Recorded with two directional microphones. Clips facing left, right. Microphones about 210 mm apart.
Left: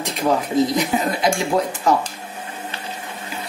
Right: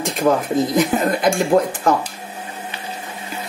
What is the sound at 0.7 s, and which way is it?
Speech, 50° right (ahead or behind).